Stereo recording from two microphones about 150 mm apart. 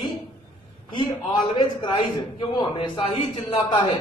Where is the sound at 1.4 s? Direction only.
35° left (ahead or behind).